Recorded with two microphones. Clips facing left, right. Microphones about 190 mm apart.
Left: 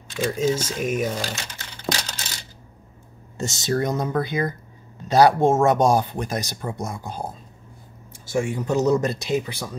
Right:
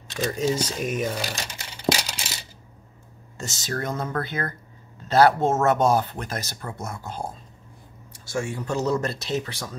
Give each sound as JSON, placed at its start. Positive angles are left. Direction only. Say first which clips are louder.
{"t": 0.2, "sound": "speech", "louder": "left 2 dB", "side_deg": 5}
{"t": 0.5, "sound": "speech", "louder": "left 2 dB", "side_deg": -10}
{"t": 0.7, "sound": "speech", "louder": "left 2 dB", "side_deg": 10}
{"t": 1.1, "sound": "a sound", "louder": "left 1 dB", "side_deg": -10}
{"t": 3.3, "sound": "speech", "louder": "left 7 dB", "side_deg": 25}